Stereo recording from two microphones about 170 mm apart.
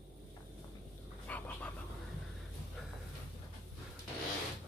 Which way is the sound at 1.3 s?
10° left (ahead or behind).